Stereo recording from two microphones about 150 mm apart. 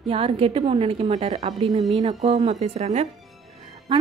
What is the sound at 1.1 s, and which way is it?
Speech, 50° right (ahead or behind).